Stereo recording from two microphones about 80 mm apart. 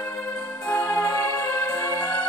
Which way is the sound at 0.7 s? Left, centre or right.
Centre.